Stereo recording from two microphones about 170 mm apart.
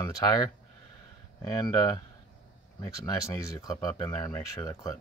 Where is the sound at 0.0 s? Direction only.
20° left (ahead or behind).